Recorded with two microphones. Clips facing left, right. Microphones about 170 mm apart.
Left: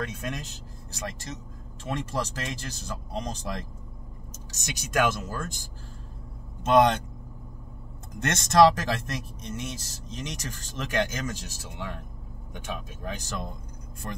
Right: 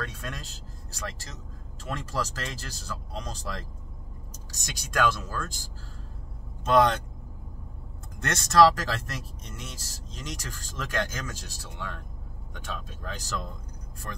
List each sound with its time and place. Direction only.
0.0 s speech: 20° left (ahead or behind)
8.2 s speech: 20° left (ahead or behind)